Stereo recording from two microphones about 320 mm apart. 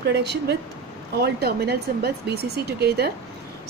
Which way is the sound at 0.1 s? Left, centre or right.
Right.